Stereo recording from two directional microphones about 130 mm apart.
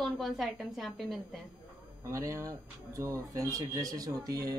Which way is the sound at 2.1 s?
25° right (ahead or behind).